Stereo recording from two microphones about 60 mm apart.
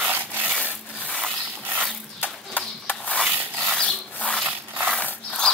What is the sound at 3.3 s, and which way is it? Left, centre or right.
Dog, right.